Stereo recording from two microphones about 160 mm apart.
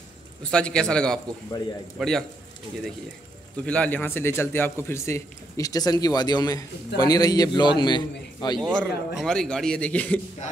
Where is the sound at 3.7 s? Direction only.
10° left (ahead or behind); by 8.6 s 25° left (ahead or behind).